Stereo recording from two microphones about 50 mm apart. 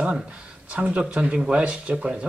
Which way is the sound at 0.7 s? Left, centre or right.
Right.